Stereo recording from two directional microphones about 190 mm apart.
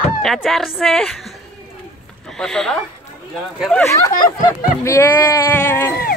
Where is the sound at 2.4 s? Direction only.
5° left (ahead or behind).